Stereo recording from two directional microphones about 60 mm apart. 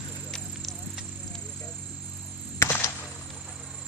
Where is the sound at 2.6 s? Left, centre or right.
Left.